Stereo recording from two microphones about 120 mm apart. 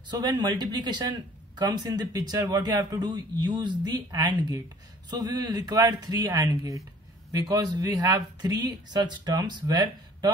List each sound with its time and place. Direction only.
0.1 s speech: 35° right (ahead or behind)